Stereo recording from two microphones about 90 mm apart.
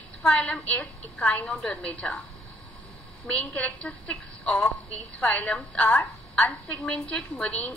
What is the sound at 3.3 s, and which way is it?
Speech, 15° left (ahead or behind).